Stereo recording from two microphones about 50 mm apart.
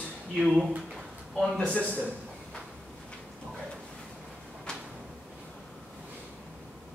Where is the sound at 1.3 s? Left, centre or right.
Centre.